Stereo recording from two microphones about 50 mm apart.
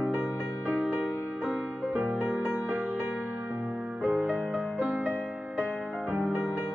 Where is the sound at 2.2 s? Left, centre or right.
Right.